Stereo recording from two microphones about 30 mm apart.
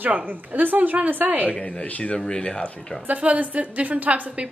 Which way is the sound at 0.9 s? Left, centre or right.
Right.